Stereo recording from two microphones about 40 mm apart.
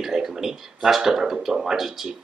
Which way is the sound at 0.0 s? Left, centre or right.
Centre.